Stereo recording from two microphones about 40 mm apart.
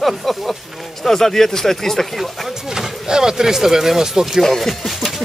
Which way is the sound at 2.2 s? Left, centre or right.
Centre.